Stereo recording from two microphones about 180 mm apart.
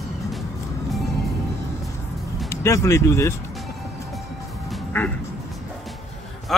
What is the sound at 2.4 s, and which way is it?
Speech, 15° left (ahead or behind).